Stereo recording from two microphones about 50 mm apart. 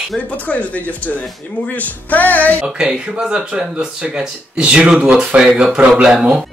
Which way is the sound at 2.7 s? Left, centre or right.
Centre.